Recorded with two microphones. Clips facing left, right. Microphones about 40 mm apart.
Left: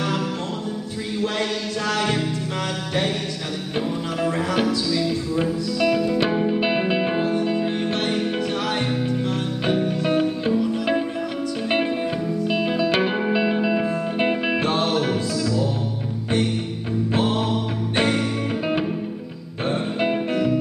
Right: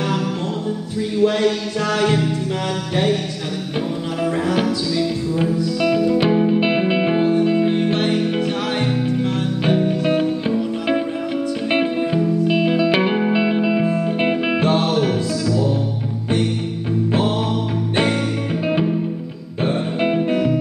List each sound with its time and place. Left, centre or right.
2.0 s music: centre
4.2 s music: centre
9.7 s music: centre
17.9 s music: centre
20.2 s music: centre